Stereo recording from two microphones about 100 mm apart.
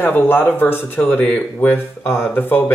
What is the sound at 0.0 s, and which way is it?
Speech, 20° left (ahead or behind).